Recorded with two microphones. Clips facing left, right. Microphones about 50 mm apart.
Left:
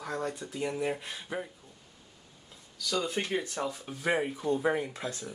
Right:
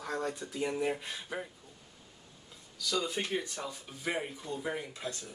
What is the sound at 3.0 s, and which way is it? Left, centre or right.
Speech, left.